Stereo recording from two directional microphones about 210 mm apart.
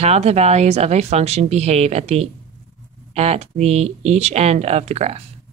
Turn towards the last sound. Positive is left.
turn(degrees=-30)  # may be behind; listen again after turning